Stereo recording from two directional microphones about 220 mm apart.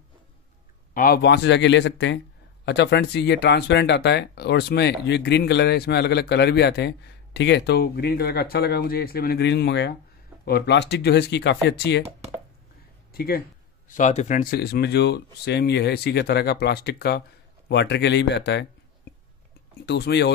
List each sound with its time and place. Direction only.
0.9 s speech: 40° left (ahead or behind)
13.1 s speech: 45° left (ahead or behind)
19.9 s speech: 50° left (ahead or behind)